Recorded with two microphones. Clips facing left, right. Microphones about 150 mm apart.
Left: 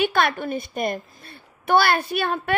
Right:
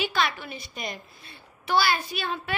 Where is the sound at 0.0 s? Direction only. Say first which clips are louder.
Left 6 dB; 55° left (ahead or behind).